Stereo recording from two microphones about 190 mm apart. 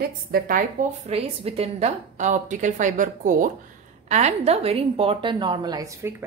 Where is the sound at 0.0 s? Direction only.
50° right (ahead or behind).